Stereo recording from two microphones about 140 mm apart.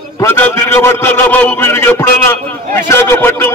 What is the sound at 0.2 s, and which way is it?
A man's voice, 15° left (ahead or behind).